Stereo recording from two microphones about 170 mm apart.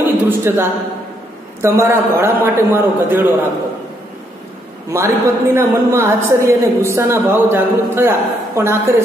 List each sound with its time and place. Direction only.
0.0 s a woman's voice: 10° right (ahead or behind)
4.9 s a woman's voice: 15° right (ahead or behind)